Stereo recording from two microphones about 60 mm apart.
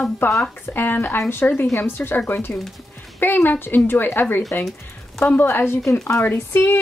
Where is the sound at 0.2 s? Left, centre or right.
Left.